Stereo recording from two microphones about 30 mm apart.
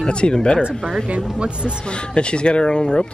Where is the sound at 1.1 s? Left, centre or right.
Right.